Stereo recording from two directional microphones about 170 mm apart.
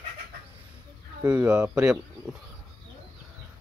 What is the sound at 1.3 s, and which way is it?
Speech, 10° right (ahead or behind).